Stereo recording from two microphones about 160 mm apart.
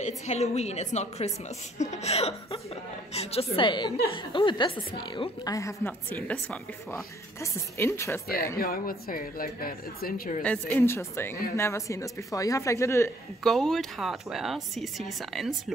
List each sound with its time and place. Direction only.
0.0 s a woman's voice: 45° left (ahead or behind); by 8.2 s 15° left (ahead or behind)
8.5 s speech: 65° left (ahead or behind)
10.4 s a woman's voice: 10° left (ahead or behind)
13.4 s a woman's voice: 5° left (ahead or behind)